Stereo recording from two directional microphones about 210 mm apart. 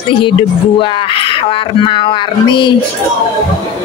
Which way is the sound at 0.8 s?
25° left (ahead or behind).